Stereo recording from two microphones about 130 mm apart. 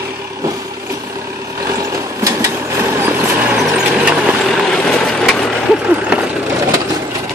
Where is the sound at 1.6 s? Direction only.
25° right (ahead or behind); by 5.8 s 5° left (ahead or behind).